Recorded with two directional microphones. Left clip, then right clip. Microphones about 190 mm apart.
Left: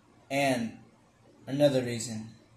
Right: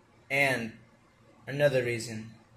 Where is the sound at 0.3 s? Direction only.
15° right (ahead or behind).